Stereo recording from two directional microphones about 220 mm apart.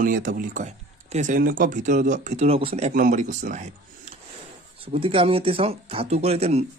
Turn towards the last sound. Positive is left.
turn(degrees=-30)  # may be behind; listen again after turning